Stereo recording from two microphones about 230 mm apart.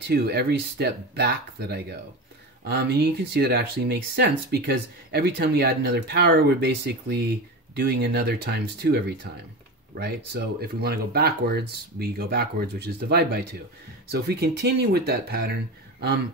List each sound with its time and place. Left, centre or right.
0.1 s speech: right